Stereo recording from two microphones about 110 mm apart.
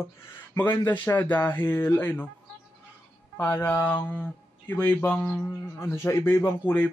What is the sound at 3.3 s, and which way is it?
Speech, 20° left (ahead or behind).